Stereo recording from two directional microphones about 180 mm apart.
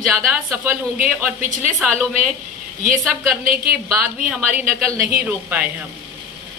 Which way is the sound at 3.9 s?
5° right (ahead or behind).